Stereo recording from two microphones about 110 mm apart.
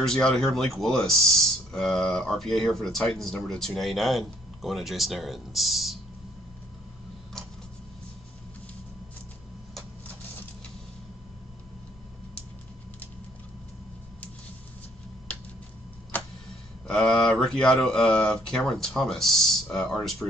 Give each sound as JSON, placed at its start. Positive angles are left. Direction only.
{"t": 0.0, "sound": "speech", "side_deg": 5}
{"t": 16.8, "sound": "speech", "side_deg": 5}